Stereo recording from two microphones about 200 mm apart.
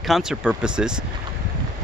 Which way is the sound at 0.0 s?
Centre (ahead or behind).